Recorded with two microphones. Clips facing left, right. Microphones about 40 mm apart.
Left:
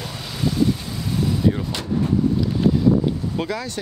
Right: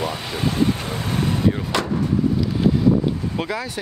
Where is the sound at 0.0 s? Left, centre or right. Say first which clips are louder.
Right 2 dB; right.